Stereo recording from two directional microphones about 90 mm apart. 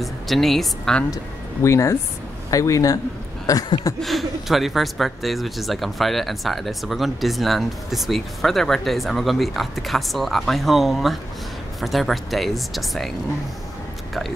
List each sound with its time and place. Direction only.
0.0 s speech: centre (ahead or behind)
1.1 s a man's voice: 35° left (ahead or behind)
3.4 s a sound: 40° left (ahead or behind)
4.0 s speech: centre (ahead or behind)